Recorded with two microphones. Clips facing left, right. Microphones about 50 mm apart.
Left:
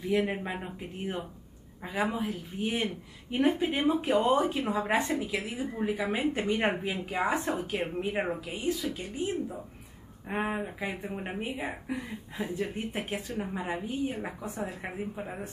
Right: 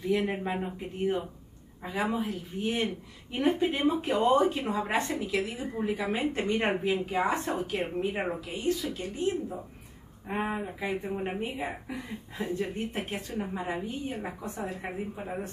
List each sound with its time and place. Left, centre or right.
0.3 s a woman's voice: centre
6.8 s a woman's voice: centre
7.2 s speech: centre
8.5 s a woman's voice: centre
11.3 s a woman's voice: centre